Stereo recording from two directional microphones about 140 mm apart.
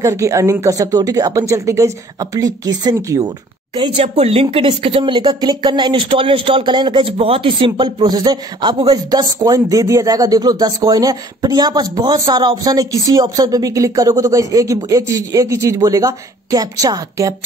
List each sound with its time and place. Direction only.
0.0 s a woman's voice: 20° right (ahead or behind)
4.0 s speech: 50° right (ahead or behind); by 17.3 s 25° right (ahead or behind)